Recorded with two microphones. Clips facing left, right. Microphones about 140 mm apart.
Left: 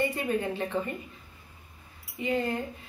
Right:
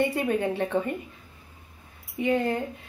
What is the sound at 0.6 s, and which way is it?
Speech, 65° right (ahead or behind).